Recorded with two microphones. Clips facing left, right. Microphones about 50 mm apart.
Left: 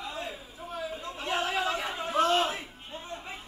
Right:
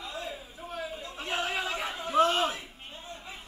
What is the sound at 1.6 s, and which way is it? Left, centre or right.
Chatter, centre.